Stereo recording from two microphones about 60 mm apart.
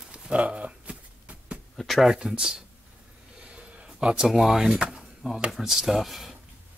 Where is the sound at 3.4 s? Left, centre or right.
Right.